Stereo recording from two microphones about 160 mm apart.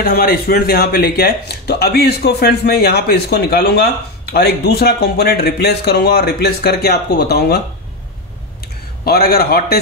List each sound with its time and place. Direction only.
0.0 s speech: 70° left (ahead or behind)
9.0 s a man's voice: 75° left (ahead or behind)